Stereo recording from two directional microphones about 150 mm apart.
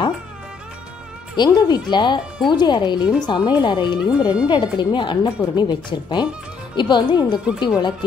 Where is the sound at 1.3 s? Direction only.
30° left (ahead or behind).